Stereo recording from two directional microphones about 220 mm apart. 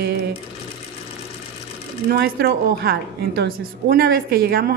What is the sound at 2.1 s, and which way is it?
A woman's voice, 45° right (ahead or behind).